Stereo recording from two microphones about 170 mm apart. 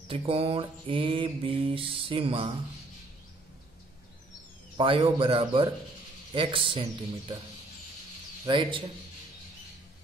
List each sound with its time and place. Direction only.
0.1 s mantra: 35° right (ahead or behind)
4.7 s mantra: 30° right (ahead or behind)
8.5 s a man's voice: 30° right (ahead or behind)